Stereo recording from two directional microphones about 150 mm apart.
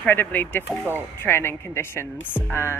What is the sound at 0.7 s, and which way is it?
Speech, 10° right (ahead or behind).